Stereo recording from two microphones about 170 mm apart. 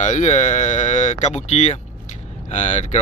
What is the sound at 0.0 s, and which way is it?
Speech, 45° left (ahead or behind).